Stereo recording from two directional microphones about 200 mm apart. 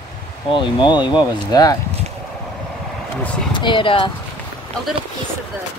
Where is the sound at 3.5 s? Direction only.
25° left (ahead or behind).